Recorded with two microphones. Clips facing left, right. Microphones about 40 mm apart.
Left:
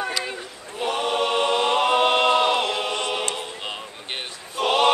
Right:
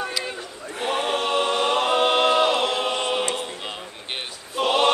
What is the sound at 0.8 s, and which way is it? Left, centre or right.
Choir, centre.